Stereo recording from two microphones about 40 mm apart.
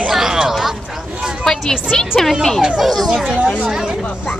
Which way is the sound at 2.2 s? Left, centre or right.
Centre.